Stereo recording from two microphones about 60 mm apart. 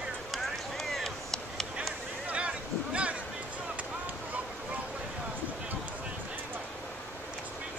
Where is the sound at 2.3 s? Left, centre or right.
Centre.